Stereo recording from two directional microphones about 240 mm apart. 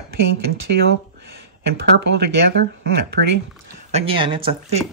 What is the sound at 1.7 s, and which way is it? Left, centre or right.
Speech, right.